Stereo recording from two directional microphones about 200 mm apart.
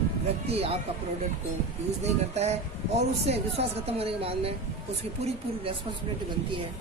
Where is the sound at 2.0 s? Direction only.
35° right (ahead or behind).